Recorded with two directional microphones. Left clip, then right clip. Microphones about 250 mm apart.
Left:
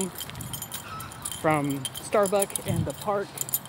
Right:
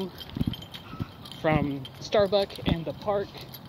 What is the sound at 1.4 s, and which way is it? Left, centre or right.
Speech, centre.